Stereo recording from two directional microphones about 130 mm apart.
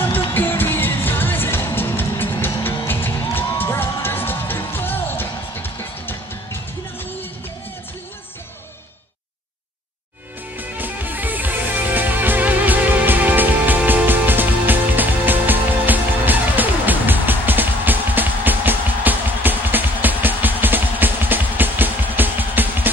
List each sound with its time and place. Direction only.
0.3 s music: 15° left (ahead or behind)
10.6 s music: 15° right (ahead or behind)